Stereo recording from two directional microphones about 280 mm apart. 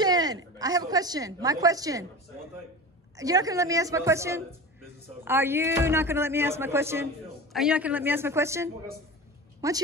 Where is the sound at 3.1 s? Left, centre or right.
Centre.